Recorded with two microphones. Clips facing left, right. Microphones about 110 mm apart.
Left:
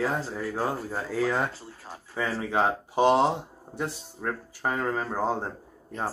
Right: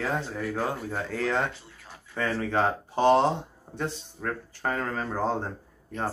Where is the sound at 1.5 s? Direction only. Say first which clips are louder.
Left 6 dB; 35° left (ahead or behind).